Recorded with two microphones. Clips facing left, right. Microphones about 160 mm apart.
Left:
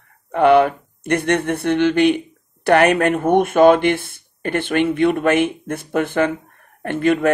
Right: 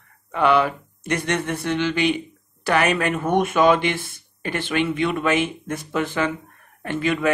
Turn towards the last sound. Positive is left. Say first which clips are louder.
# left 5 dB
turn(degrees=55)  # may be behind; listen again after turning